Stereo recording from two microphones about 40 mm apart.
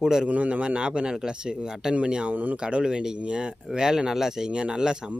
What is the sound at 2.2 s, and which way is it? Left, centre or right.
Speech, right.